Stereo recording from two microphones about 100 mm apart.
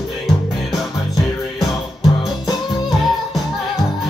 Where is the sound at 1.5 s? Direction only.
40° left (ahead or behind).